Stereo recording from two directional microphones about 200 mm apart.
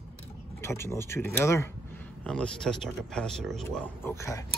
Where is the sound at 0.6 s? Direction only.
15° left (ahead or behind).